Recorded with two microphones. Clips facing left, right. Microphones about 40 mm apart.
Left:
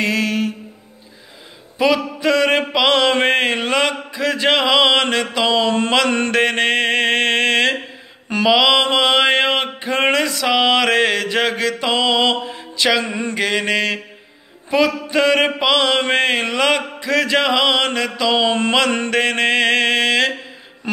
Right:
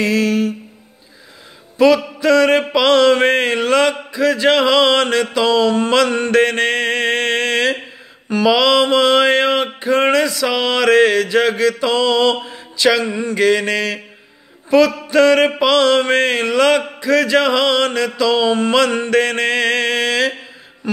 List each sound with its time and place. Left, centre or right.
0.0 s a sound: left
1.8 s mantra: left
13.1 s mantra: left
13.4 s mantra: left